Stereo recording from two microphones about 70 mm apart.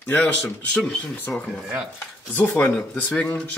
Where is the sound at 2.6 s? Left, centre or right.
Centre.